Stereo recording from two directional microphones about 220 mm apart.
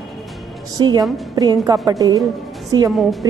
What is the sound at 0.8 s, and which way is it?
A woman's voice, 20° right (ahead or behind).